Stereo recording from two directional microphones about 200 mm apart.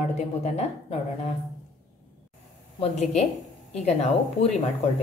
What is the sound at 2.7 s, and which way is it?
Speech, 35° left (ahead or behind).